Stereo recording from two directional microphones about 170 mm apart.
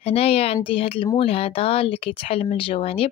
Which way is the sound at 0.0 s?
35° left (ahead or behind).